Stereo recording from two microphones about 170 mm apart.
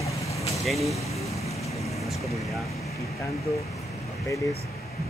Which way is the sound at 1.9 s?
Centre (ahead or behind).